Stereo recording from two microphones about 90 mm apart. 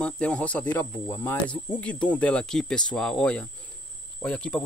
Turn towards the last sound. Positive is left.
turn(degrees=10)  # may be behind; listen again after turning